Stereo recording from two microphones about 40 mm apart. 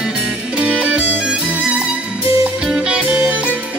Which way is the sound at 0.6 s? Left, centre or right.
Right.